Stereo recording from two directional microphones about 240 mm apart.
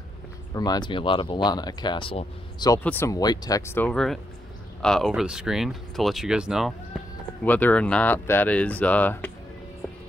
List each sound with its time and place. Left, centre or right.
0.6 s speech: centre
2.8 s speech: centre